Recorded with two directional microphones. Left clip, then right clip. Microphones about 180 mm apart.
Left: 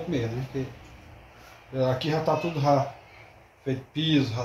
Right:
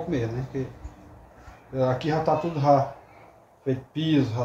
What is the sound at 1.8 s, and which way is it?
Speech, 10° right (ahead or behind).